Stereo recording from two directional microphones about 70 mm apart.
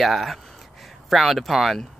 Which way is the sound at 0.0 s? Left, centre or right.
Centre.